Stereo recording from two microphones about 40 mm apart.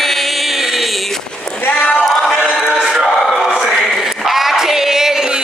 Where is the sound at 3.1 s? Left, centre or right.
Centre.